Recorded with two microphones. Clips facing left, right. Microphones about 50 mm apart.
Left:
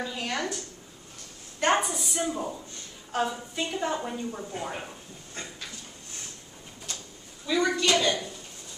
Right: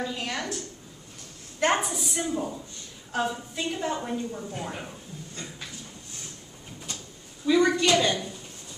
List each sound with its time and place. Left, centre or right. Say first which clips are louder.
0.0 s a woman's voice: even; centre
1.7 s a woman's voice: left 3 dB; centre
4.3 s speech: even; centre
7.4 s a woman's voice: right 3 dB; centre